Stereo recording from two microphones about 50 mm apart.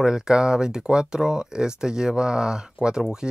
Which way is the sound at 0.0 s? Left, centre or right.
Centre.